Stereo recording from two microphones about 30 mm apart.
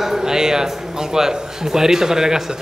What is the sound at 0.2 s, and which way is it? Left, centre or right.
A man's voice, centre.